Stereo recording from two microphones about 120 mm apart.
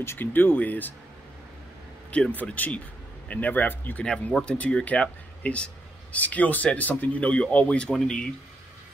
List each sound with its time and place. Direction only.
0.0 s speech: 20° left (ahead or behind)
2.0 s speech: 10° left (ahead or behind)